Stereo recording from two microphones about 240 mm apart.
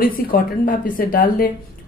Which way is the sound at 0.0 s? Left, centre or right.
Left.